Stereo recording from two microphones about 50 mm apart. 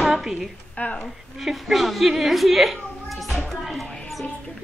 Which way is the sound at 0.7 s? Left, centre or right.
Left.